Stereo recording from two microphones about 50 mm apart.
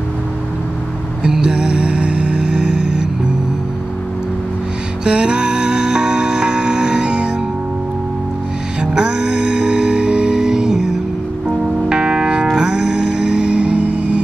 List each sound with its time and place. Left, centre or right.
1.2 s music: centre
5.0 s music: centre
8.9 s music: centre